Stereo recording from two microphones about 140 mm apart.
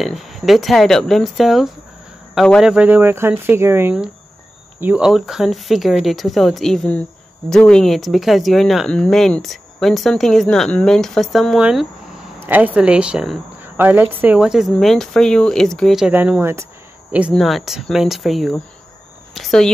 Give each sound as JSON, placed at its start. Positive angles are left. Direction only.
{"t": 0.0, "sound": "speech", "side_deg": 0}
{"t": 2.7, "sound": "speech", "side_deg": -10}
{"t": 16.1, "sound": "speech", "side_deg": -10}
{"t": 17.3, "sound": "speech", "side_deg": 0}